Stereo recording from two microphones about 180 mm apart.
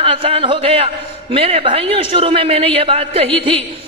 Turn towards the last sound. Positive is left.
turn(degrees=-30)  # may be behind; listen again after turning